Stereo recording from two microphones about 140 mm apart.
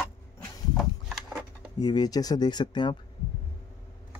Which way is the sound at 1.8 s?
30° left (ahead or behind).